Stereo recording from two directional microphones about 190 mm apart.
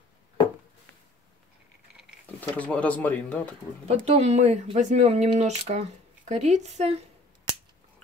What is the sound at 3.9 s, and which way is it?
Speech, 35° right (ahead or behind).